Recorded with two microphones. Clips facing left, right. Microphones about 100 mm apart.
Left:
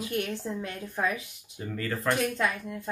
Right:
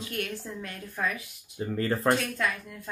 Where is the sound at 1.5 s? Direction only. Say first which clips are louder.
Right 5 dB; 30° right (ahead or behind).